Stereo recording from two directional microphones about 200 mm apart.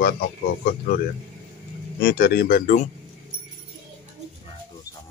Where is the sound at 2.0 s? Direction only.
50° left (ahead or behind).